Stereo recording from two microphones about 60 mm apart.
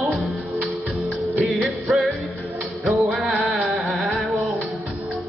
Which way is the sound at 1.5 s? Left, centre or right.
Centre.